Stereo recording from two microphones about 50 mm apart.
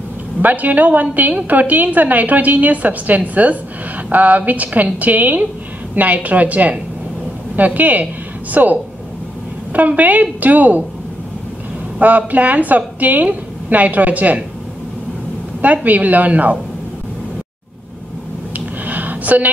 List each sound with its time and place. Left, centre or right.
0.4 s a woman's voice: right
12.0 s a woman's voice: right
15.6 s a woman's voice: right
18.9 s a sound: right